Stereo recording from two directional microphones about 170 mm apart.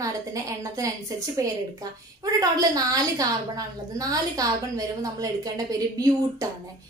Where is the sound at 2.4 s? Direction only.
20° right (ahead or behind).